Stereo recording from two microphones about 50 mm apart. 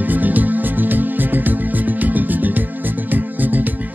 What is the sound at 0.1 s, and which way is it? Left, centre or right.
Music, right.